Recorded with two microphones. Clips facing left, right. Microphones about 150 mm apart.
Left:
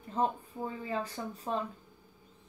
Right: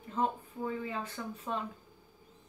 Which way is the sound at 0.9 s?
35° left (ahead or behind).